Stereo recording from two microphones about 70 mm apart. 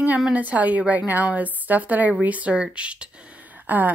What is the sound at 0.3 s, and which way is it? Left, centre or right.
A woman's voice, right.